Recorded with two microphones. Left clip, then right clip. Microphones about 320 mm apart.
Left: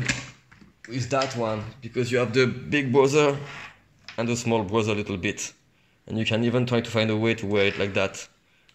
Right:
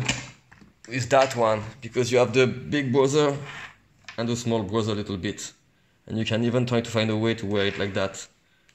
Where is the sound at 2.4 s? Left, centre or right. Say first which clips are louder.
Even; centre.